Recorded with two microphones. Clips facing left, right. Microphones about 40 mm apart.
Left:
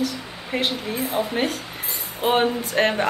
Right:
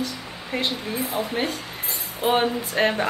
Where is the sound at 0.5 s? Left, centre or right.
Centre.